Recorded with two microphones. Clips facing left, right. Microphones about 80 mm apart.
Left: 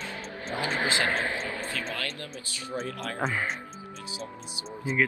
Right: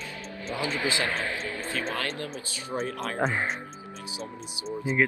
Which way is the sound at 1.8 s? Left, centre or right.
Right.